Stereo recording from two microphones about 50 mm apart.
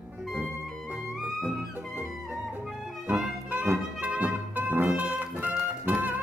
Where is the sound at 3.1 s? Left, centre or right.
Right.